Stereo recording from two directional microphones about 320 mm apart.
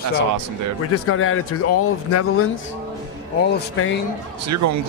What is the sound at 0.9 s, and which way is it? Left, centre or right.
Speech, left.